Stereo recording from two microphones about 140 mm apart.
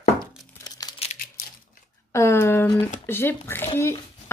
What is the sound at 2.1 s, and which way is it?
Speech, 20° left (ahead or behind).